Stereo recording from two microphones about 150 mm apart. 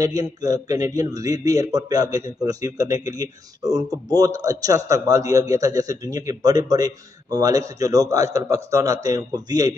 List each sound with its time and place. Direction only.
0.0 s a man's voice: 25° right (ahead or behind)